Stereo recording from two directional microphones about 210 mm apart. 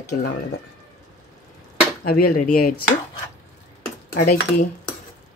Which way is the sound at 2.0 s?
45° left (ahead or behind).